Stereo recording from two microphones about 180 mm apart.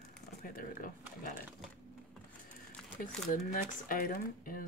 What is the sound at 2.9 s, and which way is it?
Speech, 50° left (ahead or behind).